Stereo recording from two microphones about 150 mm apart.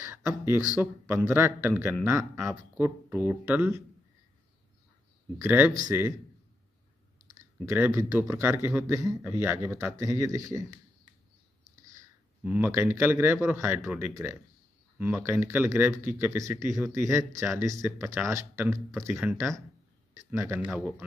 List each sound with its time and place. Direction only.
0.0 s a sound: 20° right (ahead or behind)
0.7 s speech: 20° right (ahead or behind)
5.4 s speech: 15° right (ahead or behind)
5.7 s speech: 25° right (ahead or behind)
7.3 s speech: 15° right (ahead or behind)
9.9 s speech: 20° right (ahead or behind)
12.4 s speech: 10° right (ahead or behind)